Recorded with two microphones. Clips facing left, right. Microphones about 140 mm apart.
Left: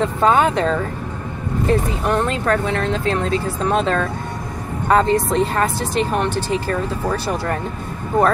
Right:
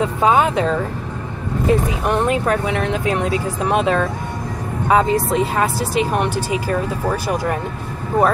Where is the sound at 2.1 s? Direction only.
10° right (ahead or behind).